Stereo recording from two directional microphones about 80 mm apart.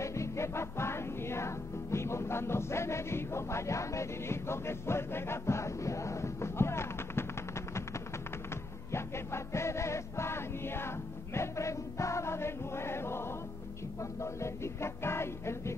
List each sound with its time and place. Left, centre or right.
0.0 s music: left
8.9 s music: left